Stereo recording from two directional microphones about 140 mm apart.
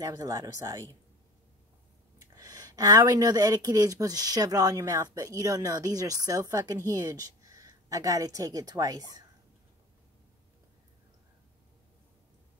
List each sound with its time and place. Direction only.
0.0 s speech: 25° right (ahead or behind)
2.1 s speech: 25° right (ahead or behind)